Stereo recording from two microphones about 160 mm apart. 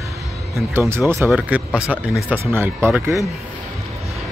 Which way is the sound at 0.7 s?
15° right (ahead or behind).